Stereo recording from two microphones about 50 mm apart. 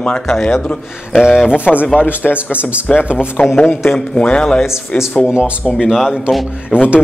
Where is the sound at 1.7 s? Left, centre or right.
Left.